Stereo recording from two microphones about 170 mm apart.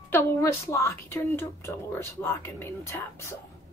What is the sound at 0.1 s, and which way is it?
A woman's voice, 15° left (ahead or behind).